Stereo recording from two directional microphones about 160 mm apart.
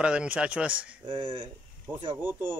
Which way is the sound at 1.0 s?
30° right (ahead or behind).